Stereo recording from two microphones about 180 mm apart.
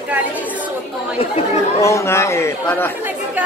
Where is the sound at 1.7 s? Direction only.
15° left (ahead or behind).